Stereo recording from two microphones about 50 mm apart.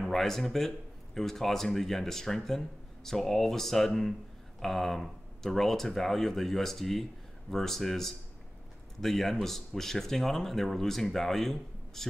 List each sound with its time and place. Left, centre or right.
0.1 s speech: centre